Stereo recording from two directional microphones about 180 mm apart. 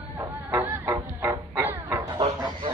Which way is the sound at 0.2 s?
15° right (ahead or behind).